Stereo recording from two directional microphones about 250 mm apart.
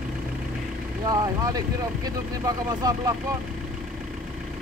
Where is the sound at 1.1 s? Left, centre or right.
Centre.